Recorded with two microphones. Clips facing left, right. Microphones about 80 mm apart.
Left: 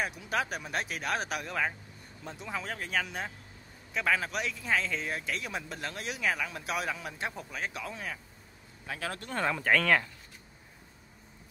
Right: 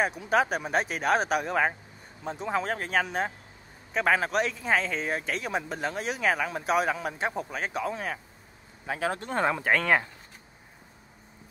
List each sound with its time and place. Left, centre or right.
0.0 s speech: right
5.4 s speech: right
8.8 s speech: right